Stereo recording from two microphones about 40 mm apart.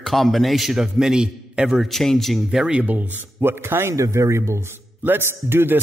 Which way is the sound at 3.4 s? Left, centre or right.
Right.